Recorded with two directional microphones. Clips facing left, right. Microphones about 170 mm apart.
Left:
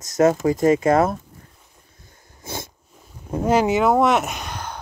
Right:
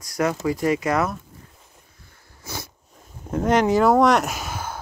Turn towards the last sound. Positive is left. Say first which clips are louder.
# right 1 dB
turn(degrees=-5)  # may be behind; listen again after turning